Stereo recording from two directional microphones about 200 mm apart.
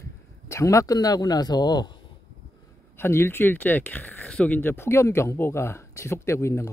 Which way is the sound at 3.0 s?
10° left (ahead or behind).